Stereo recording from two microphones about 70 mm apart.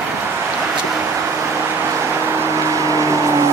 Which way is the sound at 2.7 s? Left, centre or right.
Right.